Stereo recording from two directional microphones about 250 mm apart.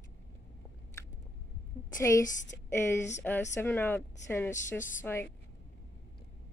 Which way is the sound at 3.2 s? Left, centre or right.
Centre.